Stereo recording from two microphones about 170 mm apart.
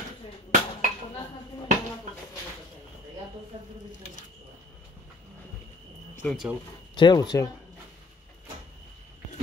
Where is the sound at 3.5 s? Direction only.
30° right (ahead or behind).